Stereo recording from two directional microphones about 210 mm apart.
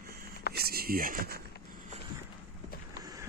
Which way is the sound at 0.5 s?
45° right (ahead or behind).